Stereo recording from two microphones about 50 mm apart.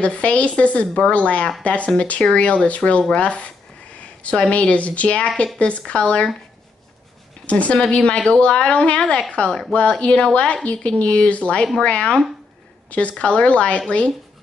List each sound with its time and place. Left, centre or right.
0.0 s speech: left
4.0 s a sound: left
4.5 s speech: left
7.4 s speech: left
13.2 s speech: left